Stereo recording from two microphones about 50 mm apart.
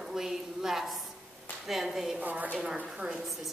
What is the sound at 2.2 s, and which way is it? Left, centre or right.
Speech, right.